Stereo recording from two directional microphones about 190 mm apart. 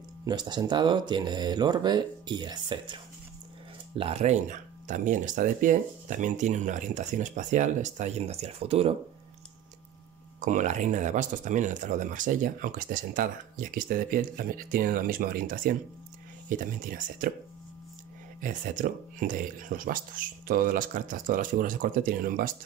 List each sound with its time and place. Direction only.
0.3 s speech: 20° right (ahead or behind)
10.4 s speech: 40° right (ahead or behind)
18.4 s speech: 45° right (ahead or behind)